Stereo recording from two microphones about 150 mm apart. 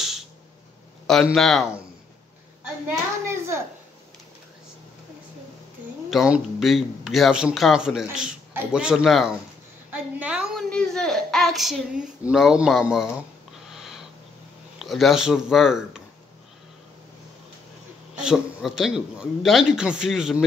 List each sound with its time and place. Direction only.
1.0 s speech: centre (ahead or behind)
3.3 s a child's voice: 20° right (ahead or behind)
6.0 s speech: 5° right (ahead or behind)
9.8 s a sound: 10° right (ahead or behind)
13.7 s sniff: 5° right (ahead or behind)
14.8 s speech: centre (ahead or behind)
18.1 s speech: 5° right (ahead or behind)